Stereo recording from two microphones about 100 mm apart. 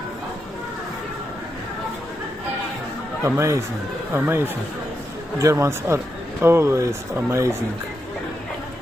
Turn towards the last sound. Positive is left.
turn(degrees=-25)  # may be behind; listen again after turning